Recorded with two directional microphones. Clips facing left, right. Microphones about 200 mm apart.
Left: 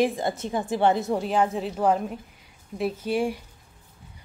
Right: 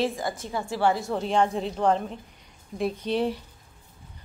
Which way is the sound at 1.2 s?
5° left (ahead or behind).